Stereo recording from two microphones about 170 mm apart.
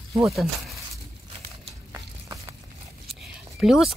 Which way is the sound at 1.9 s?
20° right (ahead or behind).